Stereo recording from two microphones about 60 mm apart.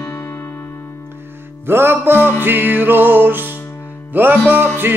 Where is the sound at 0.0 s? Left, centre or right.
Left.